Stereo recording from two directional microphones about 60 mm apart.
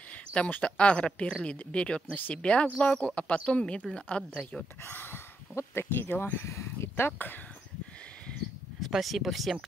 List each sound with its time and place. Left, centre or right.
0.1 s a sound: centre
0.5 s speech: left
4.8 s a sound: left
5.6 s speech: left
6.4 s speech: left
7.0 s speech: left
8.8 s speech: centre